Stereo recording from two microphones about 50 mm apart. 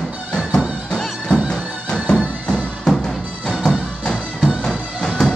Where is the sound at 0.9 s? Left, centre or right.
Centre.